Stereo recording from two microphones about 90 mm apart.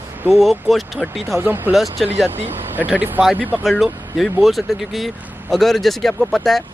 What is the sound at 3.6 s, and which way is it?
Speech, centre (ahead or behind).